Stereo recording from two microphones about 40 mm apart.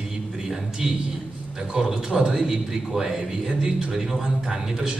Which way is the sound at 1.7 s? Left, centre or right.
Right.